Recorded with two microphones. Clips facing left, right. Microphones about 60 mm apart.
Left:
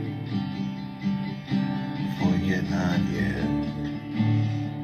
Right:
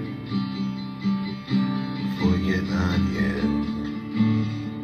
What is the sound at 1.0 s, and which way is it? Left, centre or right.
Music, right.